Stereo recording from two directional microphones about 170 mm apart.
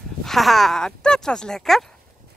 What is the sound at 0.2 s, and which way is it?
Speech, centre (ahead or behind).